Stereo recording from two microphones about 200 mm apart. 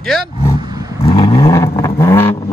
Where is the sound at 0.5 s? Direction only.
20° right (ahead or behind).